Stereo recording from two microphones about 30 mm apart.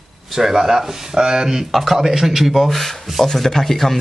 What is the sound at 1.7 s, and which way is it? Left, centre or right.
Speech, centre.